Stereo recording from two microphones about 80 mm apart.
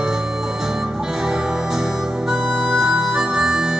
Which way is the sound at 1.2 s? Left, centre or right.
Centre.